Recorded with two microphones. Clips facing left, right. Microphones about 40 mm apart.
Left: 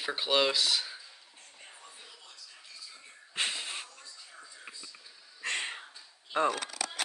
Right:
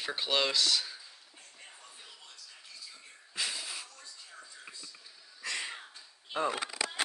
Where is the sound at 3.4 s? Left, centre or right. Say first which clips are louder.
Left 3 dB; left.